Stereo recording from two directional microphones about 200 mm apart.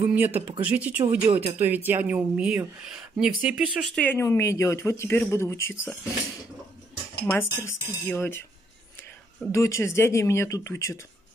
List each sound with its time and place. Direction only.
0.0 s speech: 10° right (ahead or behind); by 5.9 s 10° left (ahead or behind)
7.2 s speech: 10° left (ahead or behind)
9.5 s speech: 15° left (ahead or behind)